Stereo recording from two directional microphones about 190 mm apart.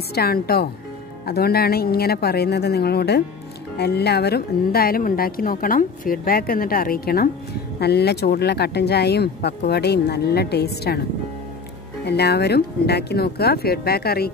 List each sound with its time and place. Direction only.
0.1 s speech: 55° left (ahead or behind)
12.0 s speech: 60° left (ahead or behind)